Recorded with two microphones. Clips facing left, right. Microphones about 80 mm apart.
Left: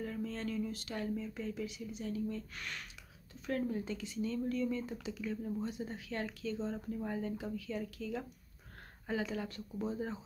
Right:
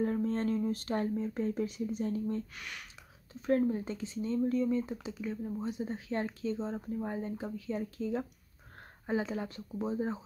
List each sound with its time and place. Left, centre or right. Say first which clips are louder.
0.0 s speech: right 8 dB; right
2.5 s speech: even; centre
3.4 s speech: right 7 dB; right